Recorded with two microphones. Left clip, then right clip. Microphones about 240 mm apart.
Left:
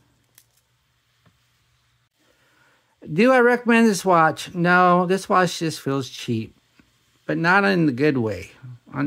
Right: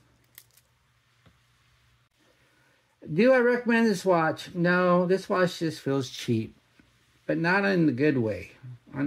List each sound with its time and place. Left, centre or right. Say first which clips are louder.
3.0 s speech: left 5 dB; left
5.9 s speech: left 2 dB; centre
7.2 s speech: left 7 dB; centre